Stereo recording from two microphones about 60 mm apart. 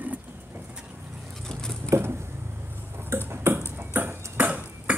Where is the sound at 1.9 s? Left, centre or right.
Right.